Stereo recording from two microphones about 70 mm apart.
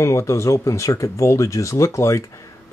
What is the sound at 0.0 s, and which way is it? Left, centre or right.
Speech, left.